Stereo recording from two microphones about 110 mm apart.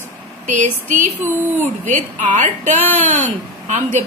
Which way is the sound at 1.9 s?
90° right.